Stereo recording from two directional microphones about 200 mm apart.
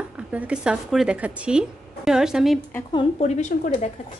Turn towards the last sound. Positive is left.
turn(degrees=35)  # may be behind; listen again after turning